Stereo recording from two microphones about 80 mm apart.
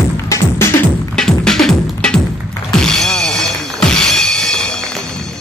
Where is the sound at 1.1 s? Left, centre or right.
Centre.